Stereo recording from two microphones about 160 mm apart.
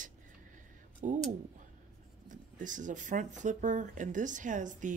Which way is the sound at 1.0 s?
50° right (ahead or behind).